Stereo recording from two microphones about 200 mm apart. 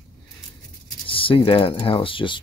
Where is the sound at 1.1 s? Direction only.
25° left (ahead or behind).